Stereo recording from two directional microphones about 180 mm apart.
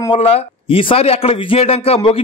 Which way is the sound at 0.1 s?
35° left (ahead or behind).